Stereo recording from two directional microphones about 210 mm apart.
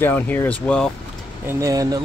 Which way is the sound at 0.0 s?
10° left (ahead or behind).